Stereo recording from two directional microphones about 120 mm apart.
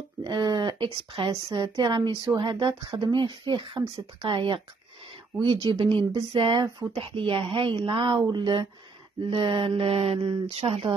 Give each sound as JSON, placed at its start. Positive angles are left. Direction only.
{"t": 0.2, "sound": "speech", "side_deg": -40}
{"t": 5.7, "sound": "speech", "side_deg": -45}